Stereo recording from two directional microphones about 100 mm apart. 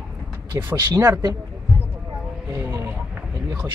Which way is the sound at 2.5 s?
30° right (ahead or behind).